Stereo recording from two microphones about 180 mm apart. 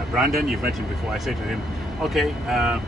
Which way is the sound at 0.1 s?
Centre (ahead or behind).